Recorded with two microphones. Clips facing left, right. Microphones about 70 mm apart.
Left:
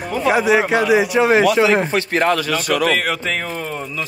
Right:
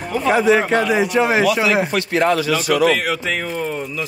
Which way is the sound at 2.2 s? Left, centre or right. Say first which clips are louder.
Right 1 dB; left.